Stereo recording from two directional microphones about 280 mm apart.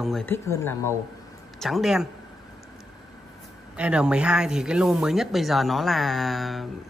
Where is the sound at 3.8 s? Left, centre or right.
Centre.